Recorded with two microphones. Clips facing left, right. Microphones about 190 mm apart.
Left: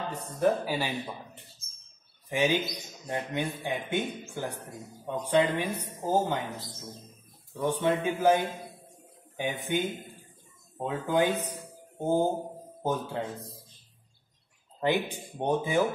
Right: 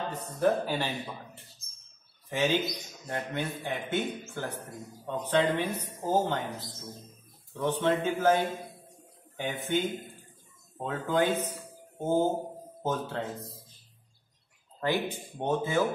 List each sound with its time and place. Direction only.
0.4 s a man's voice: 10° left (ahead or behind)
14.8 s speech: 15° left (ahead or behind)